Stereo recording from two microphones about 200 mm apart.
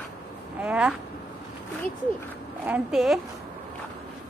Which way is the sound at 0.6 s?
5° right (ahead or behind).